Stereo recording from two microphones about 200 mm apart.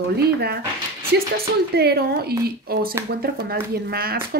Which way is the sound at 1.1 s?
55° right (ahead or behind).